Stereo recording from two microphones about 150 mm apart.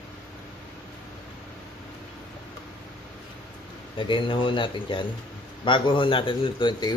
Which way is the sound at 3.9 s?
35° left (ahead or behind).